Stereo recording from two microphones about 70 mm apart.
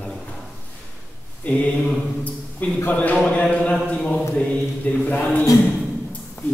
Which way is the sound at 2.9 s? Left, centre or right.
Centre.